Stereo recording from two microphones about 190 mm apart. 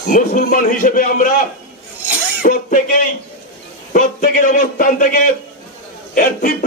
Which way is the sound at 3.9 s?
45° left (ahead or behind).